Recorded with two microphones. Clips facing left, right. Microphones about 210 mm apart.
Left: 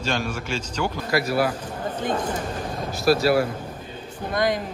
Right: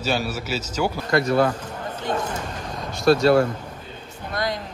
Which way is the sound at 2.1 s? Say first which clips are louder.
Left 1 dB; 25° right (ahead or behind).